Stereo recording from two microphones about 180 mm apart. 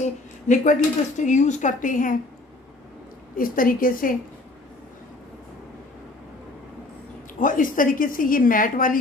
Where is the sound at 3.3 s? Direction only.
50° left (ahead or behind).